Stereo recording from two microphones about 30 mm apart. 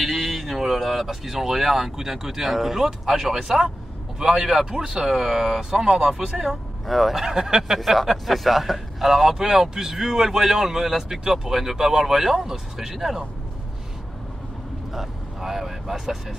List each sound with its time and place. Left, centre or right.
0.0 s speech: centre
6.9 s a man's voice: centre
7.2 s speech: centre
7.8 s a man's voice: centre
9.5 s speech: centre
14.9 s speech: centre